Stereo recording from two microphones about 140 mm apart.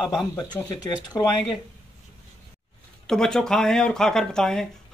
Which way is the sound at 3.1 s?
5° left (ahead or behind).